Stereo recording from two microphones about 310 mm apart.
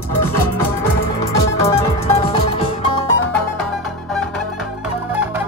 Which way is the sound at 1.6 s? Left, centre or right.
Centre.